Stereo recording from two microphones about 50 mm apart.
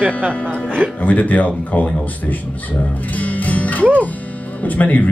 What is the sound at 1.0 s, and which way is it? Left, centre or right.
Speech, left.